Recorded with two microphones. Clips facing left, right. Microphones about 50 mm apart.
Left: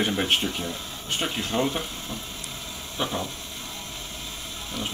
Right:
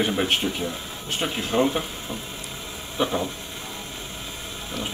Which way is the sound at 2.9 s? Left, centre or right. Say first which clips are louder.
Right 4 dB; centre.